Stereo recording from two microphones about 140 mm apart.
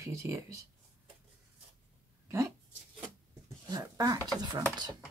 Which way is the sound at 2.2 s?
20° right (ahead or behind).